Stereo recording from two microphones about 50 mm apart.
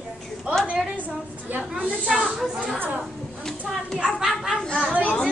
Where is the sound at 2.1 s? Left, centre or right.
Centre.